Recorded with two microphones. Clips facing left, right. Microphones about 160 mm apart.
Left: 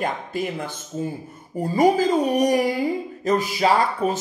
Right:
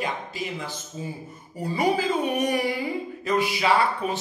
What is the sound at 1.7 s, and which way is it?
A man's voice, 45° left (ahead or behind).